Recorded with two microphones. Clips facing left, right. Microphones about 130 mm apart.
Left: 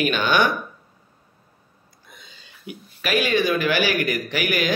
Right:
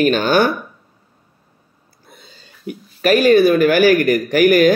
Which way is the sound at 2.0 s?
35° right (ahead or behind).